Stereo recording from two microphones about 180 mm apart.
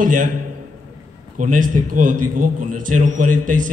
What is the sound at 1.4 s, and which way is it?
A man's voice, 45° right (ahead or behind).